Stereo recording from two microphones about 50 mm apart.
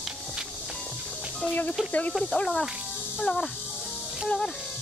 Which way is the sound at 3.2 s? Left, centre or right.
Centre.